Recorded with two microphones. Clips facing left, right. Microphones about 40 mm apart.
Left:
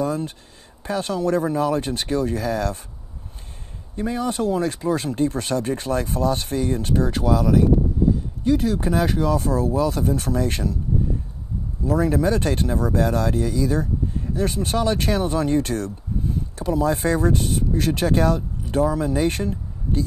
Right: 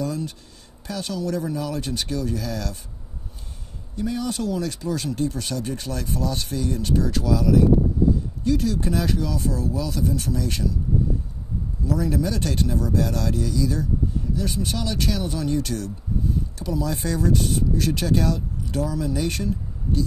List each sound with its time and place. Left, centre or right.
0.0 s speech: left
3.9 s speech: left
8.5 s speech: left
11.8 s speech: left